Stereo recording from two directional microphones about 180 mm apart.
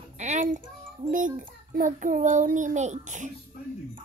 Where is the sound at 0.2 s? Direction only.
45° right (ahead or behind).